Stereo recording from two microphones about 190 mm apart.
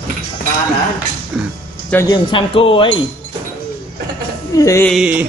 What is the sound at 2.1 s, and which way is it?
Speech, 25° left (ahead or behind).